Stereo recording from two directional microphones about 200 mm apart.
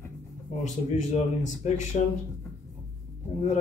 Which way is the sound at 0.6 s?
35° left (ahead or behind).